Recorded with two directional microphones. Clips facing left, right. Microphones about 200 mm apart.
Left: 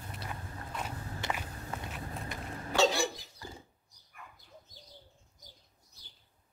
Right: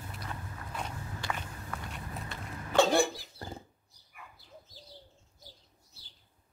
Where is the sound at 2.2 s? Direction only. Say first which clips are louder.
Left 2 dB; 15° left (ahead or behind).